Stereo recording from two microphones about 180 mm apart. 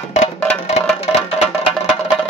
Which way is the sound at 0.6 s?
35° left (ahead or behind).